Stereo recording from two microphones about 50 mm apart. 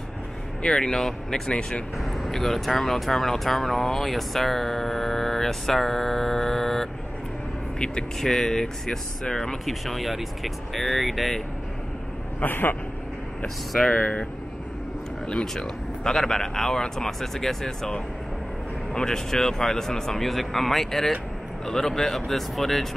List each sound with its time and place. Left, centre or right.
0.6 s speech: centre
2.0 s speech: centre
12.4 s speech: left
13.9 s speech: left
15.2 s speech: centre